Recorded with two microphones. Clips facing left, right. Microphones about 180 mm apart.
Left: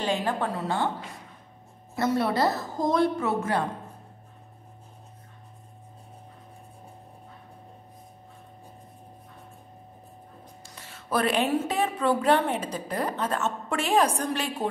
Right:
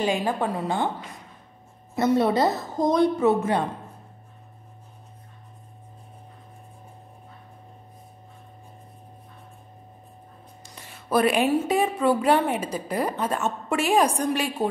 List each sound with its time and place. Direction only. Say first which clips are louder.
0.0 s a woman's voice: right 3 dB; 10° right (ahead or behind)
2.0 s a woman's voice: right 4 dB; 20° right (ahead or behind)
10.6 s a woman's voice: right 1 dB; 15° right (ahead or behind)